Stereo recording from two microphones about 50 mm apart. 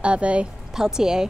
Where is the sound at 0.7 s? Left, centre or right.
Centre.